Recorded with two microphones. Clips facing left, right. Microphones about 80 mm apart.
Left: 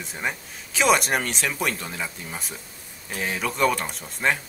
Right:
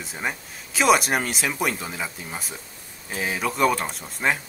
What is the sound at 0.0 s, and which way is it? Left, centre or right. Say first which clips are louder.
Speech: even; centre.